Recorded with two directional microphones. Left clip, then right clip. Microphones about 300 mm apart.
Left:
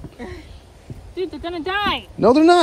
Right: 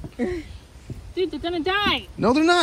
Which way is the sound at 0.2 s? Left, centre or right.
Right.